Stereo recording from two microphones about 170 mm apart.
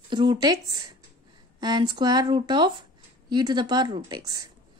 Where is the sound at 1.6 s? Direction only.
25° right (ahead or behind).